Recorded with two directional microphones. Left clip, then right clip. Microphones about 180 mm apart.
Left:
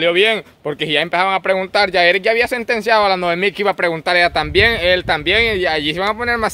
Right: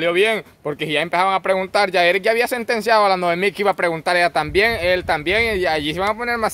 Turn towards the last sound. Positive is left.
turn(degrees=10)  # may be behind; listen again after turning